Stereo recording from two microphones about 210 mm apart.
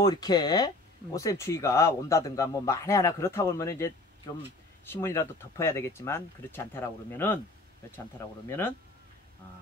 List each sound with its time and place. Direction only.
0.0 s speech: 20° left (ahead or behind)
8.5 s speech: 10° left (ahead or behind)